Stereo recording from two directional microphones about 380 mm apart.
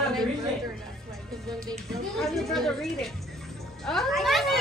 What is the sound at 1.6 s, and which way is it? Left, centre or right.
A woman's voice, centre.